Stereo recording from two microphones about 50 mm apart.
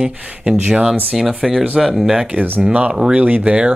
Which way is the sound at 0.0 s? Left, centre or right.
Centre.